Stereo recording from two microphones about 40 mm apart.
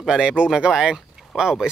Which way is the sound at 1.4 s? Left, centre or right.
Right.